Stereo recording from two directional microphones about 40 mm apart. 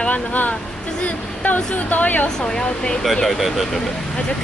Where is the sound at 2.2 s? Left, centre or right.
Centre.